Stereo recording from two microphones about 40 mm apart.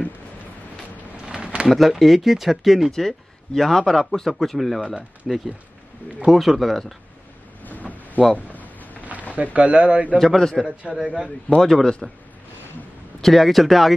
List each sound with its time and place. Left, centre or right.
1.3 s a sound: right
1.7 s a man's voice: centre
2.9 s a man's voice: centre
6.3 s a man's voice: centre
7.6 s a sound: left
9.3 s speech: right
10.1 s a man's voice: centre
11.0 s a man's voice: centre
11.2 s a man's voice: left
11.6 s a man's voice: centre
13.2 s a man's voice: centre